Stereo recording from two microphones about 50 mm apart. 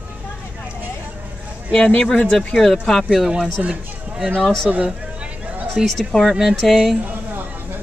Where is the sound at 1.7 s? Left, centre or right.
Left.